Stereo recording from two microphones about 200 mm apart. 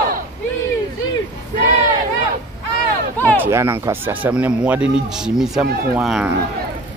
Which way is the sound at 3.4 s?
10° right (ahead or behind).